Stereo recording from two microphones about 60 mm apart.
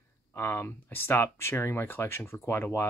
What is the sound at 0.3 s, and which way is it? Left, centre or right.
Speech, left.